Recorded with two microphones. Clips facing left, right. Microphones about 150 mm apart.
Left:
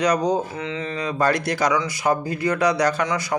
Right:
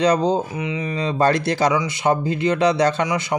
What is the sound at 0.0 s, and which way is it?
Speech, 30° right (ahead or behind).